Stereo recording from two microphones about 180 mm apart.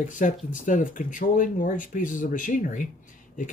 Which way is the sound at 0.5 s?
45° left (ahead or behind).